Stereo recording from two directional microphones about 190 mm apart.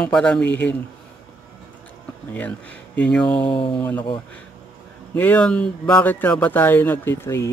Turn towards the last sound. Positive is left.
turn(degrees=15)  # may be behind; listen again after turning